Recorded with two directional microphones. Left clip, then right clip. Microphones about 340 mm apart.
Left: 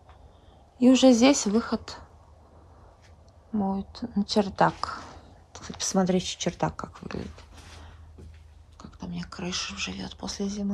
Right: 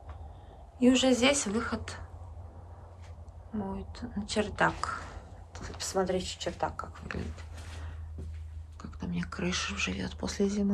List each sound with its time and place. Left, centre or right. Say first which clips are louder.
0.7 s a woman's voice: left 6 dB; centre
3.5 s a woman's voice: left 8 dB; centre
8.7 s speech: even; centre